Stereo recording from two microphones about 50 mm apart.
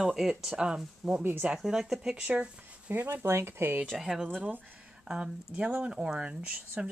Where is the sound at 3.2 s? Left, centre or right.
Right.